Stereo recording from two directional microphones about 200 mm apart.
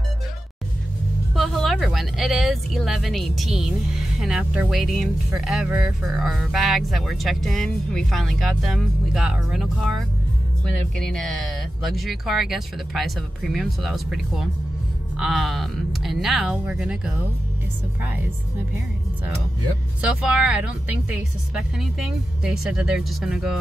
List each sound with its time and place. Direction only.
1.3 s speech: centre (ahead or behind)
20.0 s speech: 5° right (ahead or behind)